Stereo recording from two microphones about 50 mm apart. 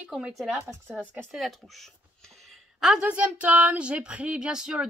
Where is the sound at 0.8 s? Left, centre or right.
Right.